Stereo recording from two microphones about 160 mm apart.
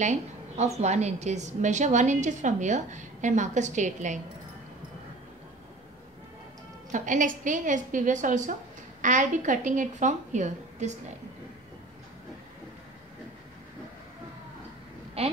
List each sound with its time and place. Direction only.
0.0 s a woman's voice: 45° right (ahead or behind)
6.9 s a woman's voice: 55° right (ahead or behind)
15.2 s a woman's voice: 40° right (ahead or behind)